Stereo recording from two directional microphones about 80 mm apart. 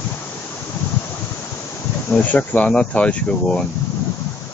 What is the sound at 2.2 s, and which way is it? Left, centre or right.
Speech, centre.